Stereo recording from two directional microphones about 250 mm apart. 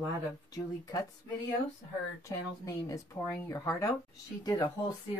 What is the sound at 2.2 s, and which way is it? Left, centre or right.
Speech, centre.